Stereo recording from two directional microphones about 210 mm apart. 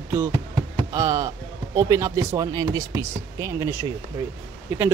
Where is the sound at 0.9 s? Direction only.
15° right (ahead or behind).